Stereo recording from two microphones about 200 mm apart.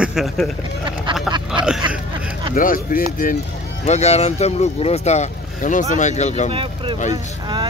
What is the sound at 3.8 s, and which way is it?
Speech, 35° left (ahead or behind).